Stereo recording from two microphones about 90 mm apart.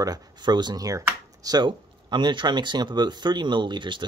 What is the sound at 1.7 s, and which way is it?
Speech, 60° right (ahead or behind).